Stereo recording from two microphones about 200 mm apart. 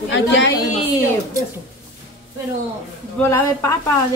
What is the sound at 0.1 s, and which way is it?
Speech, 65° left (ahead or behind).